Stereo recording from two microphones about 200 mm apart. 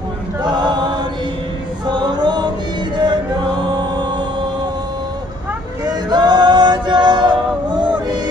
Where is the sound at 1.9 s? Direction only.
20° right (ahead or behind).